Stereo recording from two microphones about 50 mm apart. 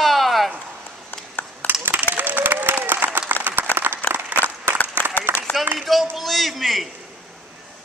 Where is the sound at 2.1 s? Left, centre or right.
Right.